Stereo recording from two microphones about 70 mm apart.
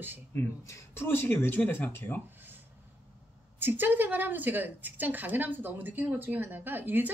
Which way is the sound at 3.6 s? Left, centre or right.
Right.